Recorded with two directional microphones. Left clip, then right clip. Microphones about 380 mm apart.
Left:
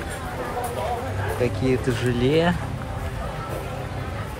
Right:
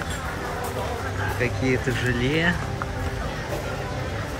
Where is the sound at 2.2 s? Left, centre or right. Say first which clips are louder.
Left 4 dB; centre.